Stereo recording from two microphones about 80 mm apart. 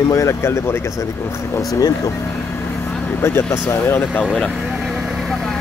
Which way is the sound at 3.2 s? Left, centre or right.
Left.